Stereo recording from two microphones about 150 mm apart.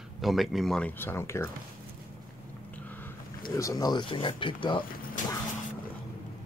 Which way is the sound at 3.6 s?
25° left (ahead or behind).